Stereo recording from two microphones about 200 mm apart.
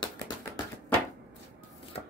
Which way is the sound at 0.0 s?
15° left (ahead or behind).